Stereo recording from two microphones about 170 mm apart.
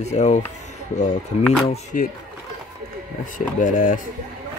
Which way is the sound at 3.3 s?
50° left (ahead or behind).